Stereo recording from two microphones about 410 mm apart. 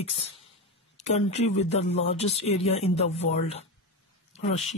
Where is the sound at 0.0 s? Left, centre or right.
Centre.